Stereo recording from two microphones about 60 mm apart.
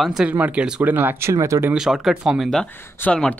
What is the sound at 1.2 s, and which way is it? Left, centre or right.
Speech, right.